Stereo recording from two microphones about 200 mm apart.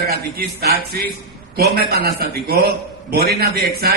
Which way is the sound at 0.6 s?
50° right (ahead or behind).